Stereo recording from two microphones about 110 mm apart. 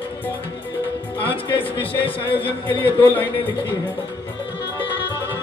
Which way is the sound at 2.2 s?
15° left (ahead or behind).